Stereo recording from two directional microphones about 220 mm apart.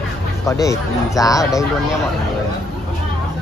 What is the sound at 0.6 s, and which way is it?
Speech, 15° left (ahead or behind).